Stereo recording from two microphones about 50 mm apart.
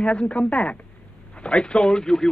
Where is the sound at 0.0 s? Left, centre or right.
Left.